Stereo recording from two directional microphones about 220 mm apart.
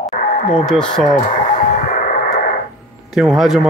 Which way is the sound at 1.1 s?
30° left (ahead or behind).